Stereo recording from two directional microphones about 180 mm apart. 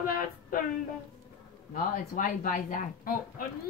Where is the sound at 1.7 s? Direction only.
50° left (ahead or behind).